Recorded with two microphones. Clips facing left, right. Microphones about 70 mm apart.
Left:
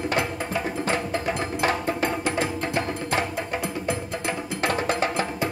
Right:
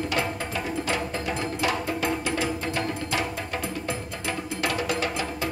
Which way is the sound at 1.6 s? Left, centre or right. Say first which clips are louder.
Left 3 dB; left.